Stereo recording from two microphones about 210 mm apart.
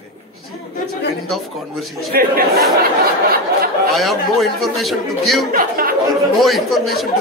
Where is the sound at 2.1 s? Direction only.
45° right (ahead or behind).